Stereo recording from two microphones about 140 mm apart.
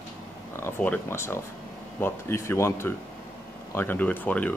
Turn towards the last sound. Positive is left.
turn(degrees=10)  # may be behind; listen again after turning